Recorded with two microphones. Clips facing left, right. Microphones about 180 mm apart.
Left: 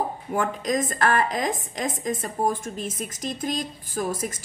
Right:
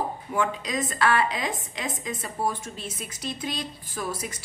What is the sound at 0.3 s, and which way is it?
A woman's voice, 45° left (ahead or behind).